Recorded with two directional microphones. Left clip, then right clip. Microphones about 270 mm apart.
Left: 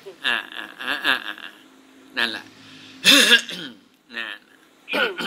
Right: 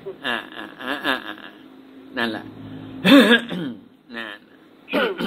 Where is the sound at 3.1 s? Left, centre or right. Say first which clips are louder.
Even; left.